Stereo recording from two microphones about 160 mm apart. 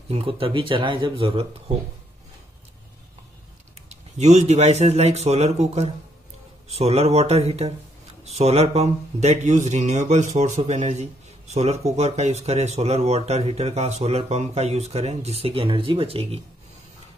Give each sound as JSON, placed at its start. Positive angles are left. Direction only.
{"t": 0.1, "sound": "speech", "side_deg": -35}
{"t": 3.9, "sound": "speech", "side_deg": -45}